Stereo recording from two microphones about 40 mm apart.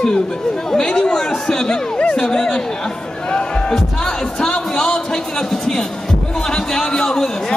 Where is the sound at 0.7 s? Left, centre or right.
Centre.